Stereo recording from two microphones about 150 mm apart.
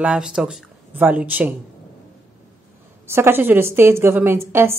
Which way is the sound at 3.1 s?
15° right (ahead or behind).